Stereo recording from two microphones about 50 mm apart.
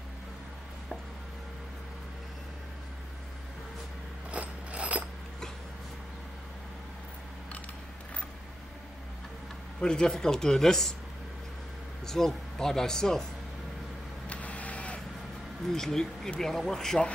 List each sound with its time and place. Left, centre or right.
4.3 s mechanisms: right
9.8 s speech: centre
12.1 s speech: centre
14.3 s vehicle: left
15.7 s speech: centre